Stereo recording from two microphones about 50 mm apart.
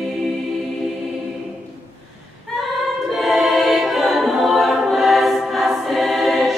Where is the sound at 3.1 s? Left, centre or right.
Centre.